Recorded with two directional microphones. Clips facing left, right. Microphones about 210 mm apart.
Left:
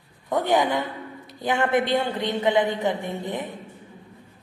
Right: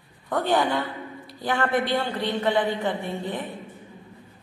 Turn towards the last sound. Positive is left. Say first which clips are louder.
# left 1 dB
turn(degrees=20)  # may be behind; listen again after turning